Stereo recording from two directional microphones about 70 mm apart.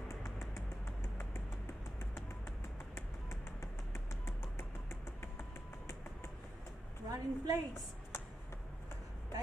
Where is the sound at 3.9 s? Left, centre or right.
Left.